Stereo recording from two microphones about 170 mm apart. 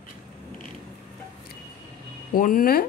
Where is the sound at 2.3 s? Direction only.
55° left (ahead or behind).